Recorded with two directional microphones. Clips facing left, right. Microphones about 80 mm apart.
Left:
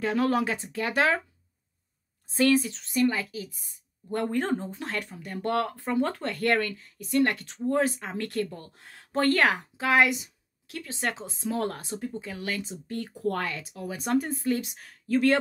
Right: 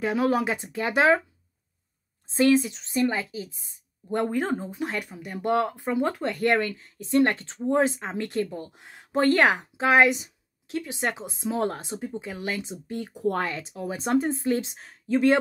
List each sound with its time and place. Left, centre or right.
0.0 s a woman's voice: centre
2.2 s a woman's voice: right
4.3 s speech: centre
6.8 s a woman's voice: right